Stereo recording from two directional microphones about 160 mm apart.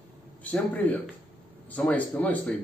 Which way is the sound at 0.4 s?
10° left (ahead or behind).